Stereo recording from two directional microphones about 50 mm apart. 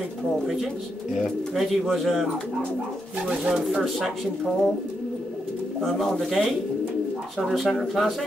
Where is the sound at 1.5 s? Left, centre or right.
Centre.